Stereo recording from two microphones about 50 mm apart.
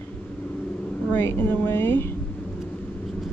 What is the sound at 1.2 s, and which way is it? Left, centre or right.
Speech, left.